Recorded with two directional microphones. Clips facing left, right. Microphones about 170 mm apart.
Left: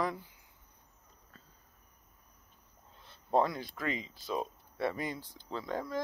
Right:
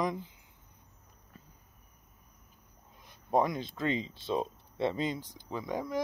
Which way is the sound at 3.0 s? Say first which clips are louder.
Right 1 dB; 15° right (ahead or behind).